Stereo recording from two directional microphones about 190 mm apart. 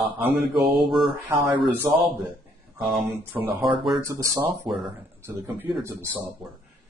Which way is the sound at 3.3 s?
10° right (ahead or behind).